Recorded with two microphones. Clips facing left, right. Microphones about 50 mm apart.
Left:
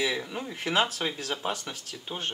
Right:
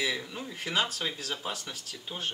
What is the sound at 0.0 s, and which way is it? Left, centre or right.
Speech, centre.